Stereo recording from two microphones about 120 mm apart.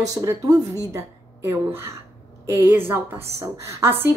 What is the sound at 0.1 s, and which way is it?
Speech, 30° right (ahead or behind).